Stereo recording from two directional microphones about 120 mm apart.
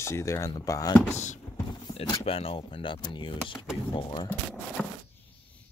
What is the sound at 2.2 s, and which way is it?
Speech, 50° left (ahead or behind).